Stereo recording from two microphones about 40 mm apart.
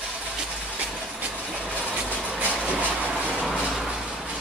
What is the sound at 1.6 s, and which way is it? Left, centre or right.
Vehicle, left.